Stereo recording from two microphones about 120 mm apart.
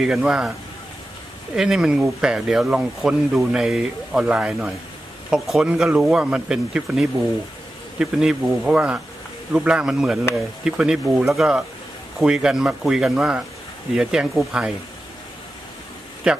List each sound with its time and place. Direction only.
0.0 s speech: 5° right (ahead or behind)
1.5 s speech: 5° right (ahead or behind)
16.3 s speech: 5° right (ahead or behind)